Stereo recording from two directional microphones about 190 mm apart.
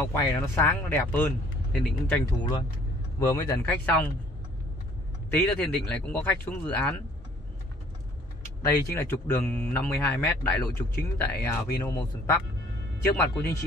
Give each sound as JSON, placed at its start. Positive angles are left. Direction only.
{"t": 0.0, "sound": "speech", "side_deg": 10}
{"t": 3.2, "sound": "speech", "side_deg": 20}
{"t": 5.3, "sound": "speech", "side_deg": 10}
{"t": 8.7, "sound": "speech", "side_deg": 10}